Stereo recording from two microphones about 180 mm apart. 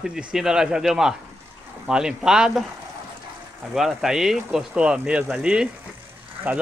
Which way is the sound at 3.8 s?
Centre (ahead or behind).